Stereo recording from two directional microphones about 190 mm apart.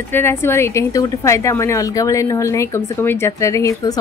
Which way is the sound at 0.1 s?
10° left (ahead or behind).